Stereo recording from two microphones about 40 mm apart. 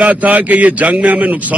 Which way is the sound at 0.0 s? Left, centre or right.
Right.